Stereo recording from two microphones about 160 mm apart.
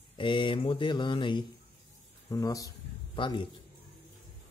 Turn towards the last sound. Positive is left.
turn(degrees=30)  # may be behind; listen again after turning